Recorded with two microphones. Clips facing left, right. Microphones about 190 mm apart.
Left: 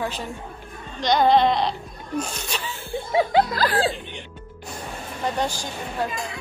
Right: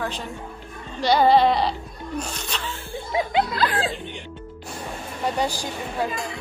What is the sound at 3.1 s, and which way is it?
Chuckle, 35° left (ahead or behind).